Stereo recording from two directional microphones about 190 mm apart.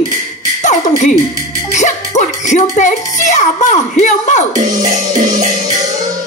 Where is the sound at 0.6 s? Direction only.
40° left (ahead or behind).